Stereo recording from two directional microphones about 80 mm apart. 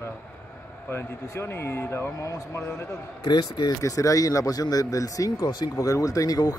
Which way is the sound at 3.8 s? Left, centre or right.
Left.